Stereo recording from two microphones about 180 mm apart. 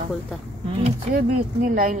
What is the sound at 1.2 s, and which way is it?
Speech, 50° right (ahead or behind).